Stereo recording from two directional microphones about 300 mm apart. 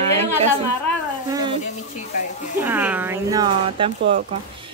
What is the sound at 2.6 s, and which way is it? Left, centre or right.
A woman's voice, centre.